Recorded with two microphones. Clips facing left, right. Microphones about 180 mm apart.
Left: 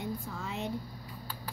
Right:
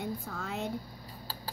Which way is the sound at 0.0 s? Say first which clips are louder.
Even; 55° right (ahead or behind).